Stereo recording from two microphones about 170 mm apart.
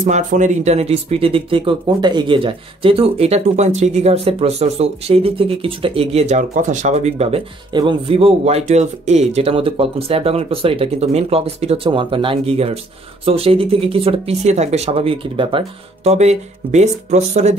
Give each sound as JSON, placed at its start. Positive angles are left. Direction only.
{"t": 0.0, "sound": "speech", "side_deg": -45}